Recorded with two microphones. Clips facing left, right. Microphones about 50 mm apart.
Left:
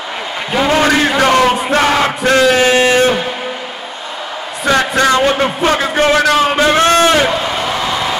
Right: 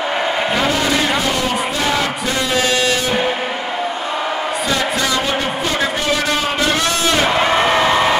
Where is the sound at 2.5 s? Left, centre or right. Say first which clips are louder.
Left 6 dB; left.